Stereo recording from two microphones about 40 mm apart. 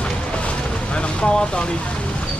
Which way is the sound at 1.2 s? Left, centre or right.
Left.